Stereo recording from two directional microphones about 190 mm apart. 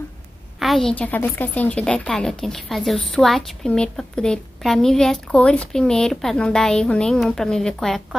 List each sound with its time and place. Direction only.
0.6 s a woman's voice: centre (ahead or behind)